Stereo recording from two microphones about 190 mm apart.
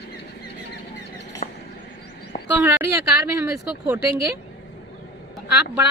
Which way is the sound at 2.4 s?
10° right (ahead or behind).